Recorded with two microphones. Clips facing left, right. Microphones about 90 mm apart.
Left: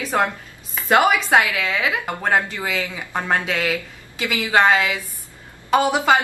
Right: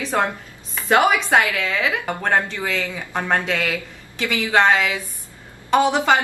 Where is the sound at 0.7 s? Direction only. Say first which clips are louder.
Even; centre (ahead or behind).